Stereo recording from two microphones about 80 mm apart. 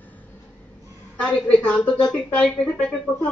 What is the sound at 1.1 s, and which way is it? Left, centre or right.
A woman's voice, centre.